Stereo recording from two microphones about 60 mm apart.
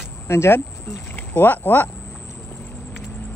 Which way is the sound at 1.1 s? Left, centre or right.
Left.